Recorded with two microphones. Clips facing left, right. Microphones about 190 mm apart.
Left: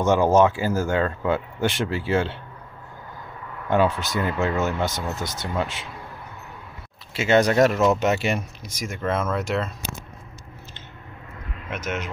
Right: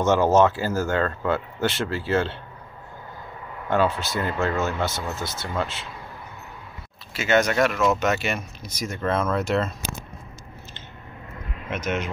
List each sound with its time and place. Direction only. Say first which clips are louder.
0.0 s speech: left 1 dB; 10° left (ahead or behind)
4.0 s speech: left 1 dB; 15° left (ahead or behind)
7.2 s speech: left 3 dB; 30° left (ahead or behind)
8.8 s speech: right 1 dB; 10° left (ahead or behind)
11.7 s speech: right 2 dB; 10° left (ahead or behind)